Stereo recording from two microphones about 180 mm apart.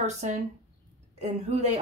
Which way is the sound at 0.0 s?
40° right (ahead or behind).